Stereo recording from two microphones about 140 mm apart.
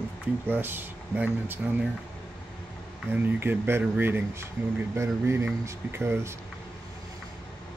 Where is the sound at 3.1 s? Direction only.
15° right (ahead or behind).